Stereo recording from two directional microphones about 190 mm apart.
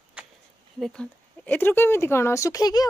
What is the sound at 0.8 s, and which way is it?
Speech, 5° left (ahead or behind).